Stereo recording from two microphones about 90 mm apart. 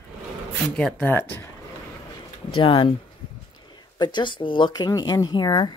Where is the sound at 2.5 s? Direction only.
70° left (ahead or behind).